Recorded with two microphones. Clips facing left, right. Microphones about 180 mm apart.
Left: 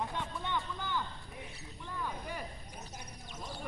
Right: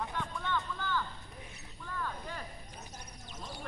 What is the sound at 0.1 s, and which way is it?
Vehicle, 20° left (ahead or behind).